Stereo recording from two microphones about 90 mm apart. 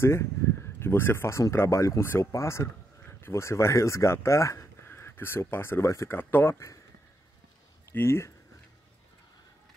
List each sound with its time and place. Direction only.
0.0 s speech: 30° left (ahead or behind)
7.9 s speech: 25° left (ahead or behind)